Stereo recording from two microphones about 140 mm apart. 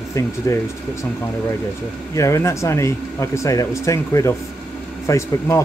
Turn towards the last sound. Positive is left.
turn(degrees=20)  # may be behind; listen again after turning